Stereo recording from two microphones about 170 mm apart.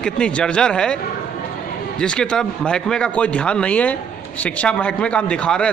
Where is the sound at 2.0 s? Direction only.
5° left (ahead or behind).